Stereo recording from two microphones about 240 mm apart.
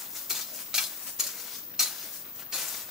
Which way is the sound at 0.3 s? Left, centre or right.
Centre.